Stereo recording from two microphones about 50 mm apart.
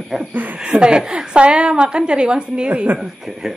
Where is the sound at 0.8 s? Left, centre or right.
Centre.